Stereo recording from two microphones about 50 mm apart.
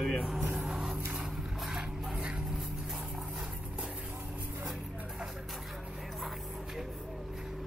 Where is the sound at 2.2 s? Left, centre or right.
Right.